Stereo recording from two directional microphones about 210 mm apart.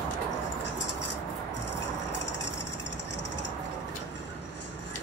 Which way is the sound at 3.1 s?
55° left (ahead or behind).